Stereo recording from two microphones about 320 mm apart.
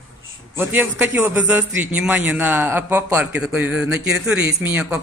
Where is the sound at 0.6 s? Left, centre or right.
Centre.